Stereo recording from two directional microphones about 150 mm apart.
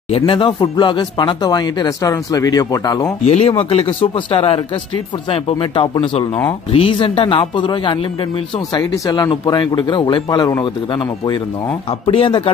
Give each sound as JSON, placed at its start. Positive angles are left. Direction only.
{"t": 0.1, "sound": "speech", "side_deg": 35}
{"t": 3.3, "sound": "speech", "side_deg": 45}
{"t": 12.1, "sound": "speech", "side_deg": 35}